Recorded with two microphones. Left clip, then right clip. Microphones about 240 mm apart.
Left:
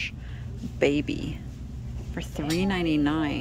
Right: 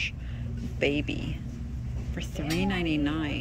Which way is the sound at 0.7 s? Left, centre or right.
Centre.